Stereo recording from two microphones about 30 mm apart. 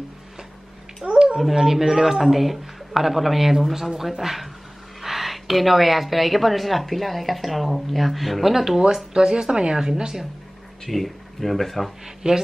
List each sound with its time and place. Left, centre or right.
1.0 s a sound: right
1.5 s a man's voice: centre
9.1 s speech: right
10.9 s a woman's voice: centre
12.2 s speech: right